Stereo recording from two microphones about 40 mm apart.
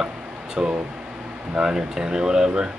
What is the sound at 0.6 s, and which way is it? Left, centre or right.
Speech, right.